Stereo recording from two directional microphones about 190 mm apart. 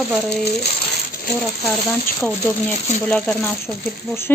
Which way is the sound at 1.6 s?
Centre (ahead or behind).